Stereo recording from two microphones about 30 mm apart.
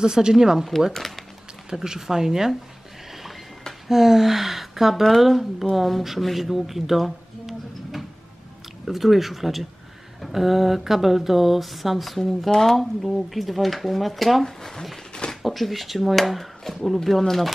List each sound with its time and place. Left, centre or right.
0.0 s speech: right
0.9 s speech: centre
1.8 s speech: centre
3.8 s speech: centre
12.4 s speech: centre
13.0 s speech: centre
14.4 s speech: centre
15.4 s speech: centre